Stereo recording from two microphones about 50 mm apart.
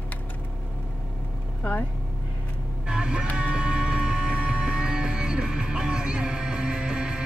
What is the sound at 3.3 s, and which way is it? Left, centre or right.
Music, right.